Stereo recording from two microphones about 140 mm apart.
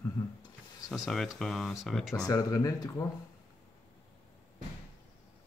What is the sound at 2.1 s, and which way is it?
Speech, 25° left (ahead or behind).